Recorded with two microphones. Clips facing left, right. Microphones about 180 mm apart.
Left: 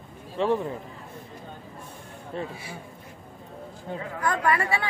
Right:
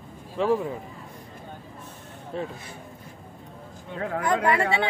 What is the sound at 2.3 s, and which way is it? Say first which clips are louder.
Speech: right 1 dB; centre (ahead or behind).